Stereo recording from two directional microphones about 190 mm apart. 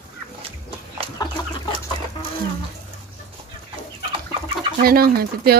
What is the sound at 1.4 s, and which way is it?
Chicken, 25° left (ahead or behind).